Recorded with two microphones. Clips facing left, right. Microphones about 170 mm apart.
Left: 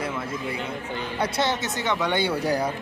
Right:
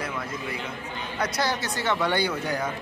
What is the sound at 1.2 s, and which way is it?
A man's voice, 25° left (ahead or behind).